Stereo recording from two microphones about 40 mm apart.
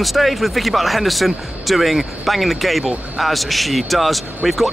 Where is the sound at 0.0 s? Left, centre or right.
Centre.